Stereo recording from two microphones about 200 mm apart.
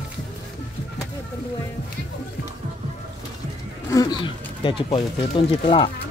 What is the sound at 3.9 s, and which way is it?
Speech, 20° left (ahead or behind).